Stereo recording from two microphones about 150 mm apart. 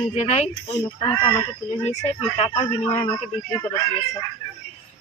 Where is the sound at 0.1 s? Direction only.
45° left (ahead or behind).